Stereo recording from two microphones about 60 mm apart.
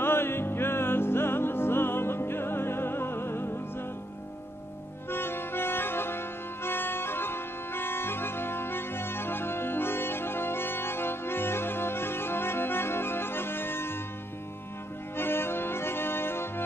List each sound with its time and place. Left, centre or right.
0.0 s music: left
5.1 s music: left
15.1 s accordion: left